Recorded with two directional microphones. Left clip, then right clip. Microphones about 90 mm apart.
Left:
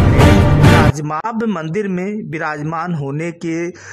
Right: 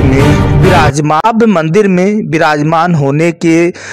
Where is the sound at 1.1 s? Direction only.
30° right (ahead or behind).